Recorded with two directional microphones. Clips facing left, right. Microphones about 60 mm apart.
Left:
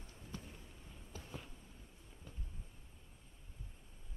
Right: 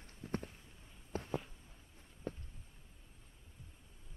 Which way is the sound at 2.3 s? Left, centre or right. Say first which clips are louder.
Right 14 dB; right.